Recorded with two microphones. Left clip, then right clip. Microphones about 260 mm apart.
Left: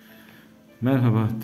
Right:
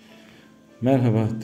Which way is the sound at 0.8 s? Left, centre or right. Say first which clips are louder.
Right 3 dB; centre.